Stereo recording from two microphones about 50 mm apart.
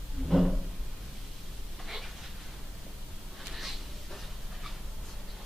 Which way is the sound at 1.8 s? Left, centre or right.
Centre.